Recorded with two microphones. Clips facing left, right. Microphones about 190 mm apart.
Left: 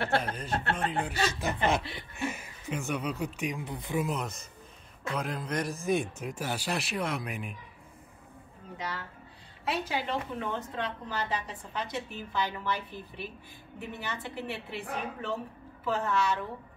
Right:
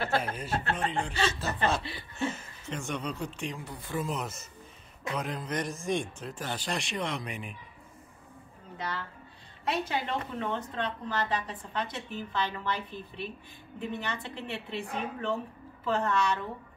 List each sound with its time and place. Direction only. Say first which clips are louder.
0.2 s a woman's voice: even; 10° right (ahead or behind); by 4.1 s 15° left (ahead or behind)
4.1 s speech: left 1 dB; centre (ahead or behind)
8.7 s a woman's voice: right 1 dB; 10° left (ahead or behind)